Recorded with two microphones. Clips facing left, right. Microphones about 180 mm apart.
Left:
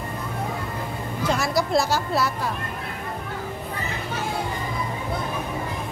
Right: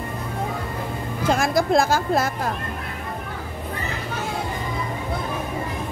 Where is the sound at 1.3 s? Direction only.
50° right (ahead or behind).